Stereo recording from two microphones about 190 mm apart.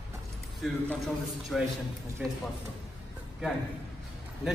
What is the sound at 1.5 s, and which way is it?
Speech, centre (ahead or behind).